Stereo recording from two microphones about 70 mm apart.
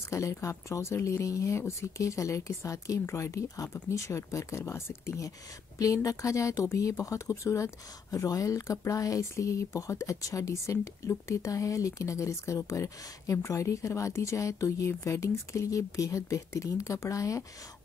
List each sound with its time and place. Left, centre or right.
0.1 s speech: left
5.8 s speech: left